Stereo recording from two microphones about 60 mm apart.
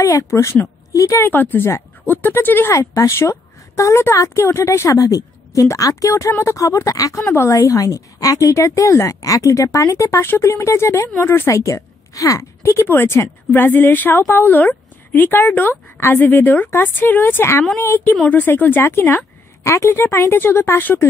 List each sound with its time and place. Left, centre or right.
0.0 s a woman's voice: left
1.1 s speech: left
2.7 s a woman's voice: left
7.2 s a woman's voice: left
7.5 s a woman's voice: left
10.2 s speech: left
10.5 s a woman's voice: left
11.5 s a woman's voice: left
12.6 s a woman's voice: left
19.6 s a woman's voice: left